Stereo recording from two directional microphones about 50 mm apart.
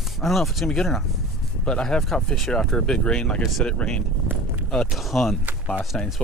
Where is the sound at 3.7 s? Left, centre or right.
Left.